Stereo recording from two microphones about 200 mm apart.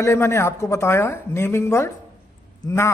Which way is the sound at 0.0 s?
15° left (ahead or behind).